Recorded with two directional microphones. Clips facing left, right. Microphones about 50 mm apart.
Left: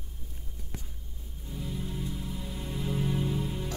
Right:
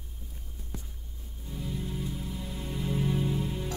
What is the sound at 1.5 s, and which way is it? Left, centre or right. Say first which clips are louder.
Music: right 1 dB; centre.